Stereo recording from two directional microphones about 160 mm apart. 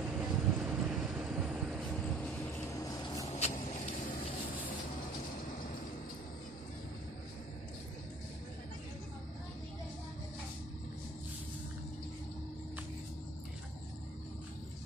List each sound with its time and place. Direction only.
0.0 s vehicle: 10° right (ahead or behind)
2.1 s vehicle: 10° left (ahead or behind)
3.3 s vehicle: 45° left (ahead or behind)